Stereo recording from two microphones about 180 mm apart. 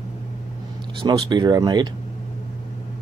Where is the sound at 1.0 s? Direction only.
25° right (ahead or behind).